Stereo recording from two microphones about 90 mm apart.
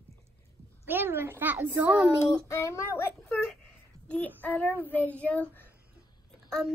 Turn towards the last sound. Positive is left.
turn(degrees=5)  # may be behind; listen again after turning